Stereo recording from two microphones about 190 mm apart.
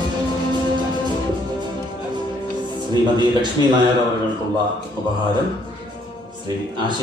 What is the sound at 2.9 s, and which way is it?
Music, 25° right (ahead or behind).